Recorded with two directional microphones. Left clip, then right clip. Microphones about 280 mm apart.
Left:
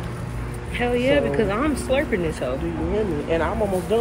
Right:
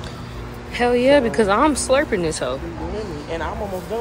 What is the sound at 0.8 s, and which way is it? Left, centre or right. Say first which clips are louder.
Speech: right 5 dB; right.